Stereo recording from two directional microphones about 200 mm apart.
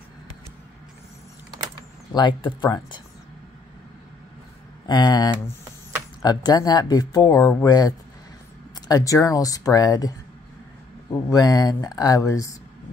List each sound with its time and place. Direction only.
2.1 s speech: 20° left (ahead or behind)
4.8 s speech: 20° left (ahead or behind)